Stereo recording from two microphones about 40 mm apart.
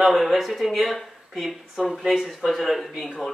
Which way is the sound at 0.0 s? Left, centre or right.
Centre.